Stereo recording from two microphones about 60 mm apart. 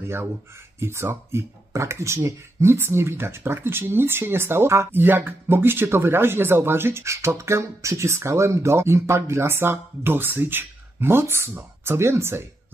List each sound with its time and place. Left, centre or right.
0.0 s speech: right